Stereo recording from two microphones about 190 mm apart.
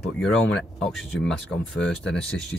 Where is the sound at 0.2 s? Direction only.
Centre (ahead or behind).